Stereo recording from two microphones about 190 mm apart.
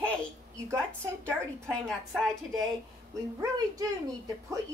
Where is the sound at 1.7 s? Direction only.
Centre (ahead or behind).